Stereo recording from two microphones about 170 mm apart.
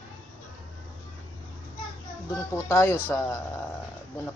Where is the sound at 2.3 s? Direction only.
15° left (ahead or behind).